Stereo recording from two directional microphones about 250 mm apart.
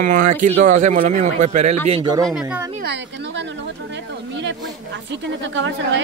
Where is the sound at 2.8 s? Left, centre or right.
Right.